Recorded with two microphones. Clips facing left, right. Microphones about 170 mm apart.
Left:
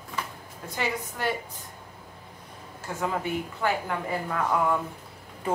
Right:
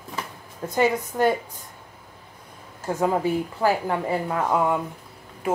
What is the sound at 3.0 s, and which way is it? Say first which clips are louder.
Speech: right 6 dB; 35° right (ahead or behind).